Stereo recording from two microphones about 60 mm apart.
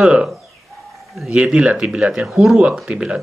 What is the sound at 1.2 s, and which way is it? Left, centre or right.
Speech, centre.